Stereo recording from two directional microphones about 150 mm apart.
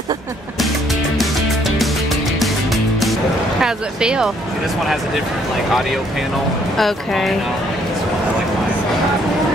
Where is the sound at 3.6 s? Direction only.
5° right (ahead or behind).